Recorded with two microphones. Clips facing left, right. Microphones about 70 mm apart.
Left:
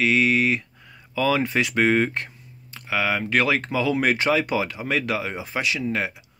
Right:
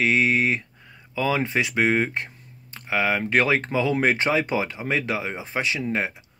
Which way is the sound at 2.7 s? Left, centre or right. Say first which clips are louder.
Right 1 dB; right.